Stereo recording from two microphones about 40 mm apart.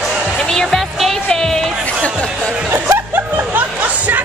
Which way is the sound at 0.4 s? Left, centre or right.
Centre.